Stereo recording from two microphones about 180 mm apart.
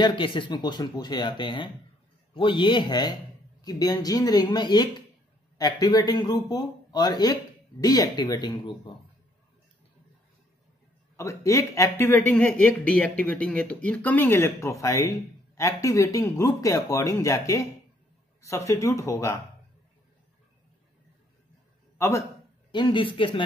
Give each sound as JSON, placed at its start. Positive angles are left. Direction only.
{"t": 0.0, "sound": "speech", "side_deg": 25}
{"t": 11.1, "sound": "a man's voice", "side_deg": 15}
{"t": 21.9, "sound": "a sound", "side_deg": 15}
{"t": 22.7, "sound": "speech", "side_deg": 25}